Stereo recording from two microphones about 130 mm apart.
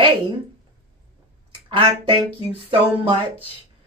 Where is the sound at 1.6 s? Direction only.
45° right (ahead or behind).